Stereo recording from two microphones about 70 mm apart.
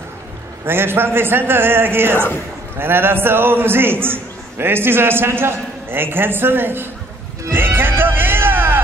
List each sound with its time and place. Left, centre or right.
0.7 s a man's voice: right
7.5 s music: right